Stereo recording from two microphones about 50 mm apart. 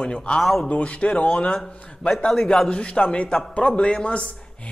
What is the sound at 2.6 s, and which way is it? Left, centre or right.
Speech, left.